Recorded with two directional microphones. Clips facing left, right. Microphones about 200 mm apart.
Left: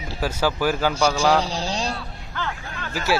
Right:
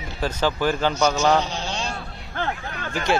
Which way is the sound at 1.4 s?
35° left (ahead or behind).